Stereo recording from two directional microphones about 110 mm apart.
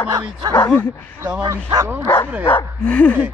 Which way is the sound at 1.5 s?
35° right (ahead or behind).